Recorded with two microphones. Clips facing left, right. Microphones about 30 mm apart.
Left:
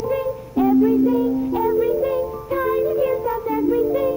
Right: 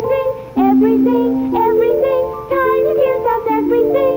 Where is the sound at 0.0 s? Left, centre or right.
Right.